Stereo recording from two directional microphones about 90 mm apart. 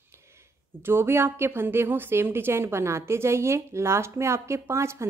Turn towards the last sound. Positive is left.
turn(degrees=-30)  # may be behind; listen again after turning